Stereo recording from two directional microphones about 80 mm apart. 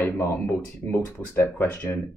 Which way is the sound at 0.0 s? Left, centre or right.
Left.